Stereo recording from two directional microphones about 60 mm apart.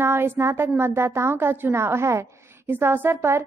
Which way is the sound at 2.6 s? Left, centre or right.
Right.